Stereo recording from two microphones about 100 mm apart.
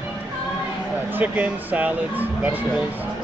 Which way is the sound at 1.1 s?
15° right (ahead or behind).